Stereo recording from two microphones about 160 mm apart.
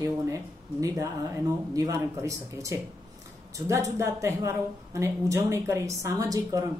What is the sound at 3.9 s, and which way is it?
A woman's voice, 15° right (ahead or behind).